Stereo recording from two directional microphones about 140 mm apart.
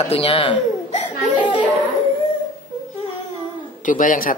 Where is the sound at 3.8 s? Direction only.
75° left (ahead or behind).